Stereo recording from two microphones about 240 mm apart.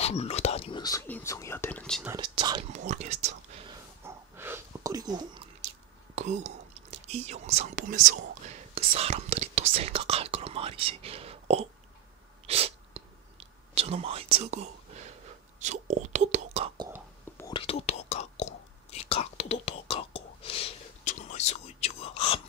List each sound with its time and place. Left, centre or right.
0.0 s speech: left; by 2.0 s centre
2.0 s speech: centre
2.7 s speech: right
4.0 s a sound: centre
6.1 s speech: right
12.4 s whispering: right
17.4 s whispering: centre